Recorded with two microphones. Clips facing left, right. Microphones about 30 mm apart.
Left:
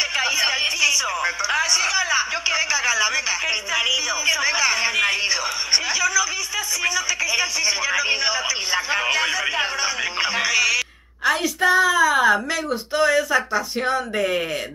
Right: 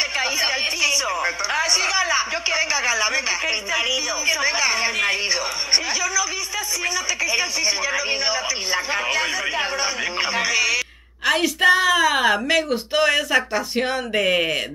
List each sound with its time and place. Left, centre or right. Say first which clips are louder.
0.1 s speech: left 1 dB; centre
11.2 s a woman's voice: right 2 dB; right